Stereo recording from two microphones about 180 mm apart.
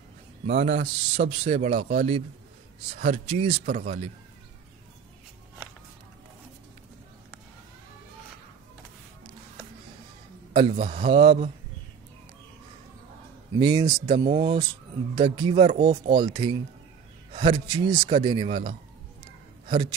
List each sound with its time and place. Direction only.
0.5 s a man's voice: 40° right (ahead or behind)
3.6 s a man's voice: 45° right (ahead or behind)
10.5 s a man's voice: 30° right (ahead or behind)
13.6 s a man's voice: 25° right (ahead or behind)
14.0 s a man's voice: 35° right (ahead or behind)